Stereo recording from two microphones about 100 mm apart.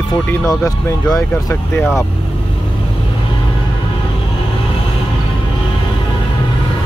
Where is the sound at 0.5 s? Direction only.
35° left (ahead or behind).